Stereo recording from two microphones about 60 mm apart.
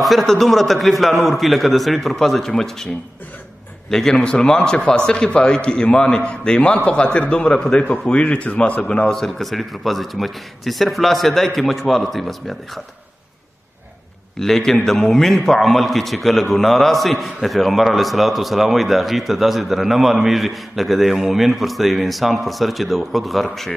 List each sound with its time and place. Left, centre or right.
0.0 s a man's voice: centre
3.9 s a man's voice: centre
8.8 s a man's voice: centre
14.4 s a man's voice: centre